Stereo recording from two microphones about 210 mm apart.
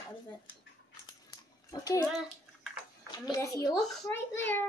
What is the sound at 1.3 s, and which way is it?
Scissors, 15° left (ahead or behind).